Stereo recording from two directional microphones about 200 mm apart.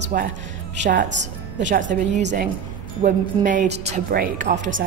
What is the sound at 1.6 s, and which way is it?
A woman's voice, 40° right (ahead or behind).